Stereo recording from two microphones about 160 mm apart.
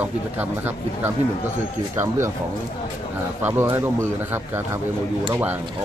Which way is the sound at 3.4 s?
15° right (ahead or behind).